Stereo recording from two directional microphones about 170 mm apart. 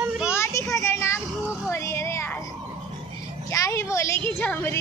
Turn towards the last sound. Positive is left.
turn(degrees=10)  # may be behind; listen again after turning